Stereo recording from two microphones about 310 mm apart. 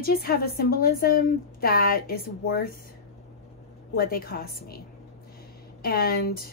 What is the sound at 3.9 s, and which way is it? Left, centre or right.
Speech, left.